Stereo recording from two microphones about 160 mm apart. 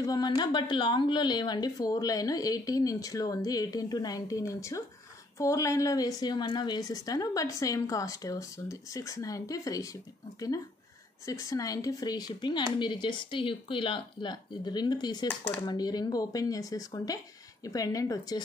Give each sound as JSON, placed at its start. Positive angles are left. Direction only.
{"t": 0.0, "sound": "a woman's voice", "side_deg": 25}
{"t": 11.2, "sound": "a woman's voice", "side_deg": 20}
{"t": 15.2, "sound": "speech", "side_deg": 10}
{"t": 15.6, "sound": "a woman's voice", "side_deg": 25}